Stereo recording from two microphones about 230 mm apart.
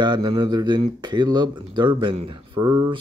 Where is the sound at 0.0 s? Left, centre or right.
Centre.